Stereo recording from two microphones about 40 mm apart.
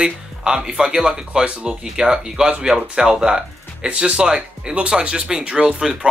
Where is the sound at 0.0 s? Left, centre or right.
Centre.